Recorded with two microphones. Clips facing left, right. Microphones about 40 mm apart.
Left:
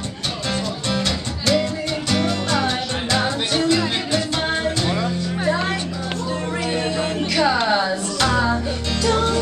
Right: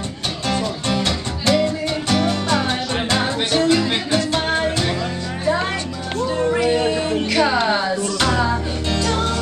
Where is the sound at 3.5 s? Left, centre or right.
Centre.